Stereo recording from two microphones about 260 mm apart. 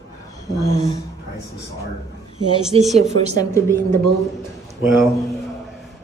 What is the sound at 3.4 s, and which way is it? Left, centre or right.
Speech, centre.